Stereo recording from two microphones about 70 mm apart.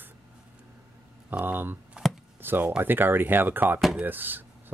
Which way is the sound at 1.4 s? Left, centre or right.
Right.